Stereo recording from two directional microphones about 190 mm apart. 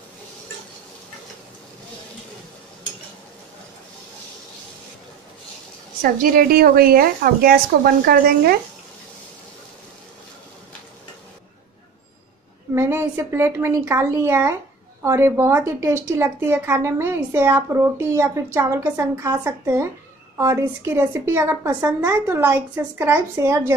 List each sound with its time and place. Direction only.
6.0 s a woman's voice: 50° right (ahead or behind)
12.7 s a woman's voice: 15° right (ahead or behind)